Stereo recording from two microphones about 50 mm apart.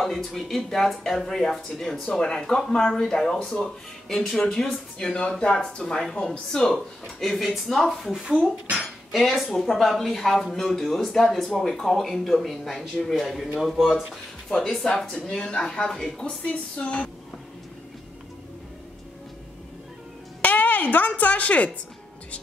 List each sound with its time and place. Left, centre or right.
0.0 s speech: centre
4.9 s a woman's voice: centre
5.8 s speech: centre
9.1 s speech: centre
15.2 s speech: centre
20.4 s a sound: left
21.2 s a woman's voice: left